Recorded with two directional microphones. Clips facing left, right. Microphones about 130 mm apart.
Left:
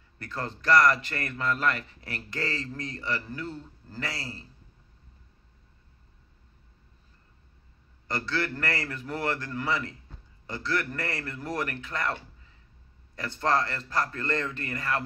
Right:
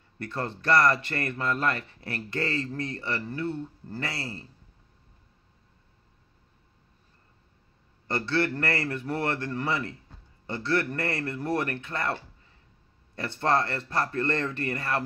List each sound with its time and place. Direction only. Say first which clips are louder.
0.2 s speech: right 3 dB; 25° right (ahead or behind)
8.1 s speech: right 4 dB; 25° right (ahead or behind)